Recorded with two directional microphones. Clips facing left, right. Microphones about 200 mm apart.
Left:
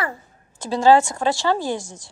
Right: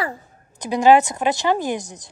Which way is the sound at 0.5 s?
20° right (ahead or behind).